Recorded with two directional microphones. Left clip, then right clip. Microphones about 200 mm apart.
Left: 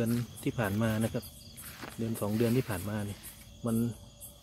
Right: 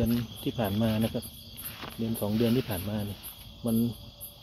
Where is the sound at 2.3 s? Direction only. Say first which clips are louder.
Right 2 dB; 10° left (ahead or behind).